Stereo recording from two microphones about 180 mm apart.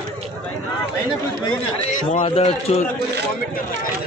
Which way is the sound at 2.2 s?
30° left (ahead or behind).